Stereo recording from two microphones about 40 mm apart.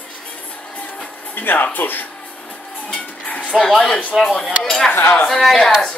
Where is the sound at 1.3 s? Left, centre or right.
Left.